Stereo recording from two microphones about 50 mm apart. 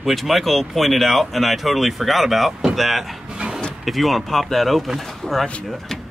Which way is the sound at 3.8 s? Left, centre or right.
Centre.